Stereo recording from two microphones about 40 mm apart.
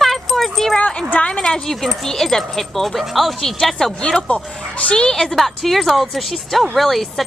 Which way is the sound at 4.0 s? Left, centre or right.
Left.